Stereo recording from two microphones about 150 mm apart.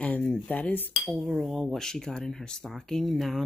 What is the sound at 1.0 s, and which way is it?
Speech, centre (ahead or behind).